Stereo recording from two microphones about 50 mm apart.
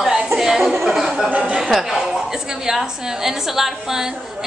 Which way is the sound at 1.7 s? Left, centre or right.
Centre.